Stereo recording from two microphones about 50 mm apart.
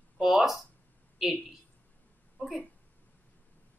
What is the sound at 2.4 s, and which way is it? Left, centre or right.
Speech, left.